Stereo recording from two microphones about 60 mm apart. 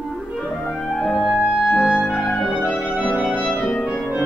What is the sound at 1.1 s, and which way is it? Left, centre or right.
Music, centre.